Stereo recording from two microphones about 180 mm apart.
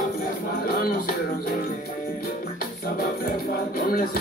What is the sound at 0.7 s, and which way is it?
Music, 55° left (ahead or behind).